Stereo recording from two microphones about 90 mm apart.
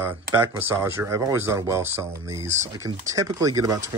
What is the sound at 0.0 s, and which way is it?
Speech, 25° right (ahead or behind).